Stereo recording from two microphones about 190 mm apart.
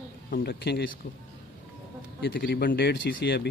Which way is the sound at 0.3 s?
55° left (ahead or behind).